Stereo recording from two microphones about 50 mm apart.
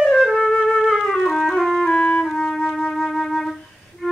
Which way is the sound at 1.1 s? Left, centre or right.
Centre.